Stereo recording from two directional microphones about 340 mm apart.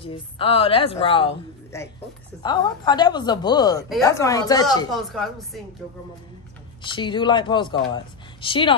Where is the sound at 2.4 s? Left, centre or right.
Centre.